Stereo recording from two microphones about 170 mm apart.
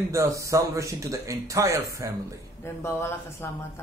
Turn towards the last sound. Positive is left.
turn(degrees=15)  # may be behind; listen again after turning